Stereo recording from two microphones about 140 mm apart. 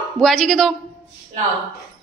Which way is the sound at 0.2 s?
5° left (ahead or behind).